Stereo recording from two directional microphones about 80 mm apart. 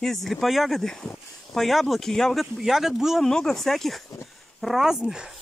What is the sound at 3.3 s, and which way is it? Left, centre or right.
Speech, centre.